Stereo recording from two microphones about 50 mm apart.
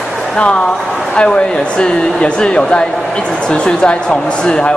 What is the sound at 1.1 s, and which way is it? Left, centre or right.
Speech, left.